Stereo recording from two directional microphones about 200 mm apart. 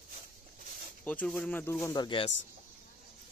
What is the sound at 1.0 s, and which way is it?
Speech, 10° left (ahead or behind).